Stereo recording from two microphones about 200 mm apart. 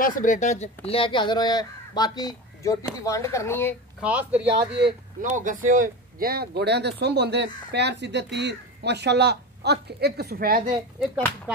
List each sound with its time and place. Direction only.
0.0 s speech: 40° left (ahead or behind); by 3.7 s 10° left (ahead or behind)
4.0 s speech: 5° right (ahead or behind)
5.2 s speech: 40° right (ahead or behind)